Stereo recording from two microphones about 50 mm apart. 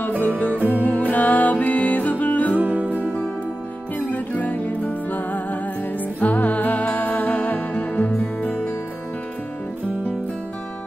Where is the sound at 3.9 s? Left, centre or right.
Left.